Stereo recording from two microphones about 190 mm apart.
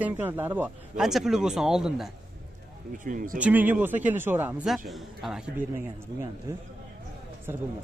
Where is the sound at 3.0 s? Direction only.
45° right (ahead or behind).